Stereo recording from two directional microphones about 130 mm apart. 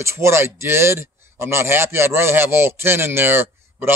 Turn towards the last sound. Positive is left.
turn(degrees=-20)  # may be behind; listen again after turning